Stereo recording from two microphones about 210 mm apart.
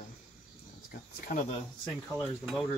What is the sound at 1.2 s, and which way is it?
Speech, 40° left (ahead or behind).